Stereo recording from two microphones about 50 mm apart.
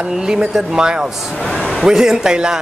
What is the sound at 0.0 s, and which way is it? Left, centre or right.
Speech, centre.